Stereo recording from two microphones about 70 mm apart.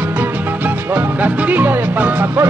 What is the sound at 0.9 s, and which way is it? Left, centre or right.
Music, right.